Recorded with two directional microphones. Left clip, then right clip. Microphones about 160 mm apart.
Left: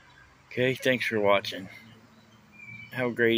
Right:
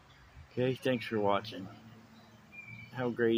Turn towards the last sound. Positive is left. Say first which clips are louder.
# left 6 dB
turn(degrees=0)  # may be behind; listen again after turning